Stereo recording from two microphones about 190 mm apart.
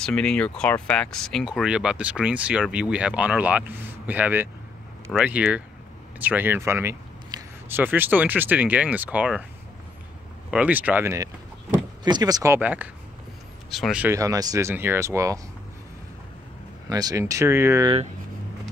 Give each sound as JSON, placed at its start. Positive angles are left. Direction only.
{"t": 0.0, "sound": "speech", "side_deg": 5}
{"t": 10.5, "sound": "speech", "side_deg": -10}
{"t": 12.5, "sound": "speech", "side_deg": -10}
{"t": 14.0, "sound": "speech", "side_deg": -15}
{"t": 16.9, "sound": "speech", "side_deg": -20}